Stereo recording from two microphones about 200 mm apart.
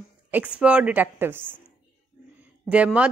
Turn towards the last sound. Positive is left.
turn(degrees=-5)  # may be behind; listen again after turning